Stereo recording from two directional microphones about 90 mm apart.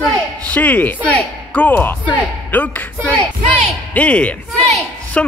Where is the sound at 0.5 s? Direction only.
15° left (ahead or behind).